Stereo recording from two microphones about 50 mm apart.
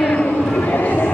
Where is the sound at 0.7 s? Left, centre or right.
Left.